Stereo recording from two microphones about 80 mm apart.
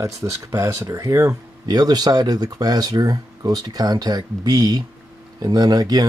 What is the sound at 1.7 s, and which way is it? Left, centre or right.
Speech, right.